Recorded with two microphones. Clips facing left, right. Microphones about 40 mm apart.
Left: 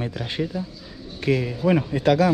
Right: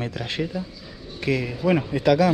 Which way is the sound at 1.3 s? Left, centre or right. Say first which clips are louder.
Left 1 dB; right.